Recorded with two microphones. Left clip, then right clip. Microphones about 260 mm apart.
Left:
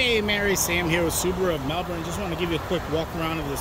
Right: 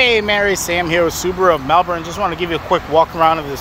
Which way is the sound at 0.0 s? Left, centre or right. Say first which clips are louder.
Right 9 dB; centre.